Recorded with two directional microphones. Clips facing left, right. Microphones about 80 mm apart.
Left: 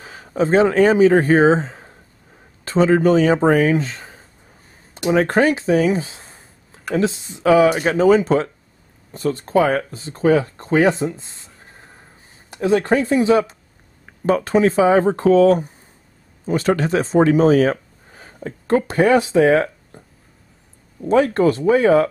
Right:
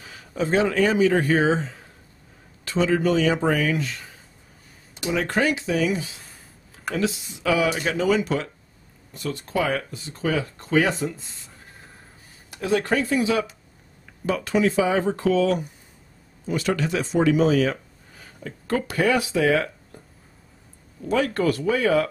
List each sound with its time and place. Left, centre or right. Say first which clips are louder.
0.0 s speech: left 7 dB; left
12.4 s speech: left 6 dB; left
21.0 s speech: left 7 dB; left